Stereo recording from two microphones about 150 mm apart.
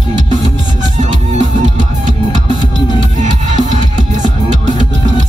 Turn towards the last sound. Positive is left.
turn(degrees=-55)  # may be behind; listen again after turning